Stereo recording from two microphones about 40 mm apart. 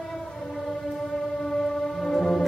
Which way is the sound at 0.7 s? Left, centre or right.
Centre.